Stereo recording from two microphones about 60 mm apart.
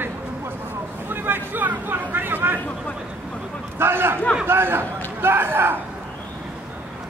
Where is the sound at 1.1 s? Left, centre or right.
Right.